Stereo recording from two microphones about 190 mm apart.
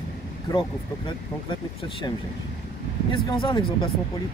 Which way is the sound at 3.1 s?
25° left (ahead or behind).